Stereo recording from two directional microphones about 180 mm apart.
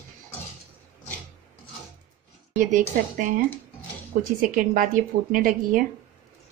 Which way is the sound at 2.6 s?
45° right (ahead or behind).